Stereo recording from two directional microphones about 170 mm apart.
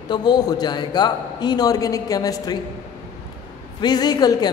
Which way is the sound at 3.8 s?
25° left (ahead or behind).